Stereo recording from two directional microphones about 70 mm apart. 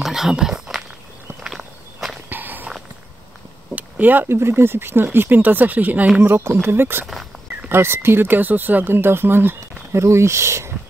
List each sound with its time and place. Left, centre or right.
0.0 s a sound: centre
2.2 s walk: right
3.7 s speech: right
10.0 s speech: right